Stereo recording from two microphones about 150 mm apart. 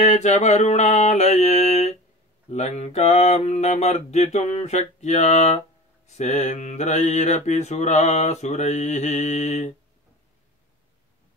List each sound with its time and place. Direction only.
0.0 s mantra: 50° left (ahead or behind)